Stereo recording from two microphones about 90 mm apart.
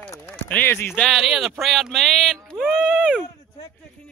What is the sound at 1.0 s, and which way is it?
Speech, centre (ahead or behind).